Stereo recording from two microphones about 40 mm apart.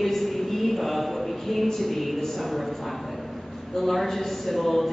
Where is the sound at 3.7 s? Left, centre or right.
Centre.